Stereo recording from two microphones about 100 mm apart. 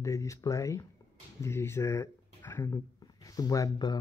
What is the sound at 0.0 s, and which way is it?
Speech, 30° left (ahead or behind).